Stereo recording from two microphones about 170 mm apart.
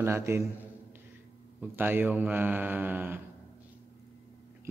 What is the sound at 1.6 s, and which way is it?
Speech, 10° right (ahead or behind).